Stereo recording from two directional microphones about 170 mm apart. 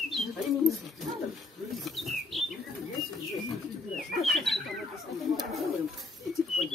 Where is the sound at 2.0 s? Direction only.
Centre (ahead or behind).